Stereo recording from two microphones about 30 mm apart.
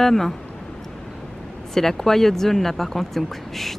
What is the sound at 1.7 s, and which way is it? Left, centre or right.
Speech, centre.